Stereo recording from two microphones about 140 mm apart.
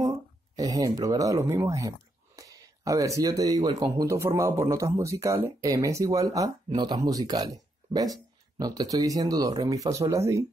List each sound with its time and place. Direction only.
0.6 s speech: 25° right (ahead or behind)